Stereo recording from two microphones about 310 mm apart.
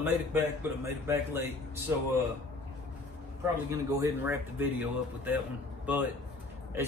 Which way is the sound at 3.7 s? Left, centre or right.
Centre.